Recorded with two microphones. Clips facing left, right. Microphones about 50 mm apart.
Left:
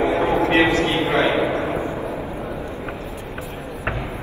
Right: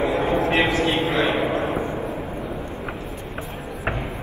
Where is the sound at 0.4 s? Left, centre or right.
Left.